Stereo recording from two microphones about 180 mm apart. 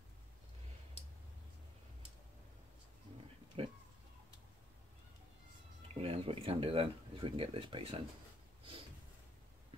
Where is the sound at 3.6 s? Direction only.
30° right (ahead or behind).